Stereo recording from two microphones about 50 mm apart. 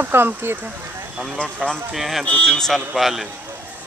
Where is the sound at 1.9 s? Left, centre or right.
Centre.